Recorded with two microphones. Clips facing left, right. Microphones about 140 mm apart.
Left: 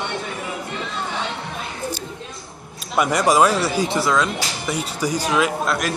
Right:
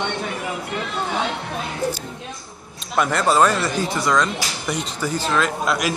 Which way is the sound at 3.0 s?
10° left (ahead or behind).